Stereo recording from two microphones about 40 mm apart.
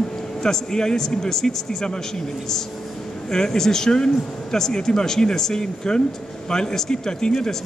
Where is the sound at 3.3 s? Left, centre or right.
Centre.